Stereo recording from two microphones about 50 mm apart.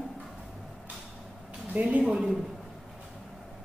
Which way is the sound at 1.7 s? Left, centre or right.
Right.